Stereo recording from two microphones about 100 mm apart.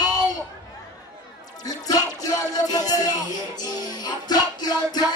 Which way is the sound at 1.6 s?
40° left (ahead or behind).